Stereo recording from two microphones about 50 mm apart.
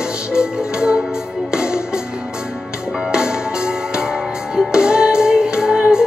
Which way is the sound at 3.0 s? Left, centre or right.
Centre.